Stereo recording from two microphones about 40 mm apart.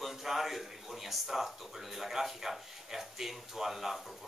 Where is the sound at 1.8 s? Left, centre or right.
Centre.